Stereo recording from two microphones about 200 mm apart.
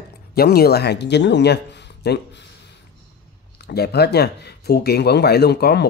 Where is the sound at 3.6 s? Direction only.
55° left (ahead or behind).